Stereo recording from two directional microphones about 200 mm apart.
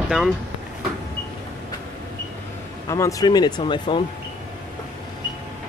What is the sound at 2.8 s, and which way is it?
Speech, 15° left (ahead or behind).